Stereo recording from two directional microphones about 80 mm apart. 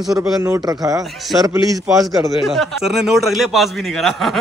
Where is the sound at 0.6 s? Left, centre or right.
Right.